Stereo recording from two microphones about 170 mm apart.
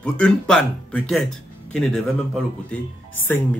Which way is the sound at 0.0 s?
5° left (ahead or behind).